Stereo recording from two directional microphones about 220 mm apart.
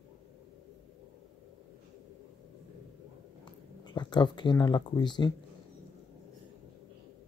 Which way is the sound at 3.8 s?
20° left (ahead or behind).